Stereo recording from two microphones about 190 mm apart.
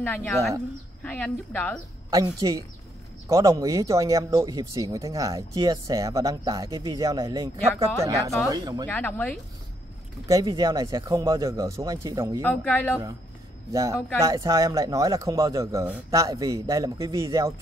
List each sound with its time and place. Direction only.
0.0 s a woman's voice: 10° left (ahead or behind)
2.0 s speech: 20° right (ahead or behind)
8.8 s a woman's voice: 10° left (ahead or behind)
10.2 s speech: 20° right (ahead or behind)
12.4 s a woman's voice: 10° left (ahead or behind)
13.7 s speech: 15° right (ahead or behind)